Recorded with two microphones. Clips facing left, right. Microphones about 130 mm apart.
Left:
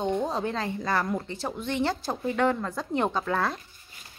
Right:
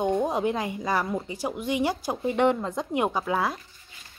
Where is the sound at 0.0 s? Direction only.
15° right (ahead or behind).